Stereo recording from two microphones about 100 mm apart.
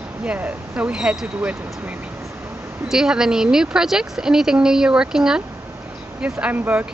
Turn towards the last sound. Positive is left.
turn(degrees=-15)  # may be behind; listen again after turning